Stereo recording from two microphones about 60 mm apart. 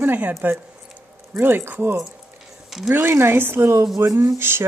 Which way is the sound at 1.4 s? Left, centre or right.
Right.